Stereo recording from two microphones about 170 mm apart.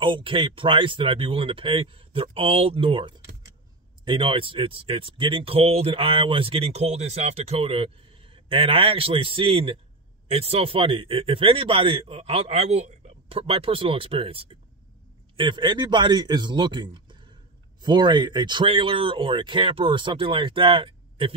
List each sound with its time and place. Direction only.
0.0 s speech: 30° right (ahead or behind)